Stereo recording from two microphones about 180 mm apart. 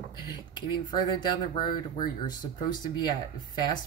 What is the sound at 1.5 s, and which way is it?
Speech, 25° left (ahead or behind).